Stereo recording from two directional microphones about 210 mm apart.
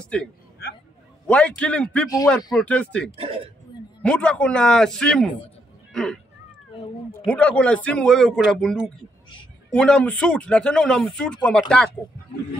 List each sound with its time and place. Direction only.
0.0 s speech: 5° left (ahead or behind)
3.2 s speech: 25° right (ahead or behind)
4.0 s speech: 5° left (ahead or behind)
7.2 s speech: 5° left (ahead or behind)